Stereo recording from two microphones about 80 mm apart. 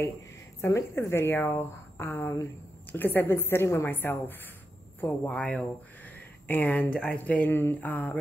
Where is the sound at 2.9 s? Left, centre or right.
Left.